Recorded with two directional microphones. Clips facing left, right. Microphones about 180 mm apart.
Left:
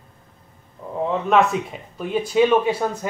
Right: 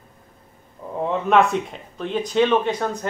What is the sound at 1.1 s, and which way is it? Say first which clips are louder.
Speech: even; centre (ahead or behind).